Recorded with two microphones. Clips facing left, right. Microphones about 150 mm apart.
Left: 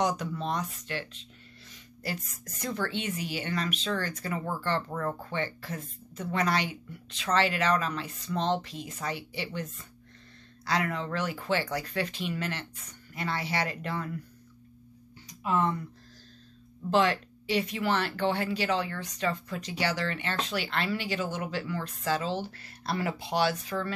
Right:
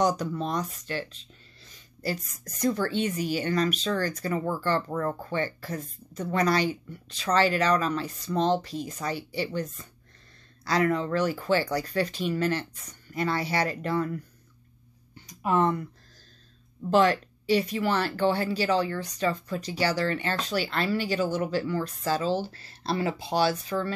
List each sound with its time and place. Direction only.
0.0 s speech: 40° right (ahead or behind)
15.4 s speech: 50° right (ahead or behind)
16.9 s speech: 40° right (ahead or behind)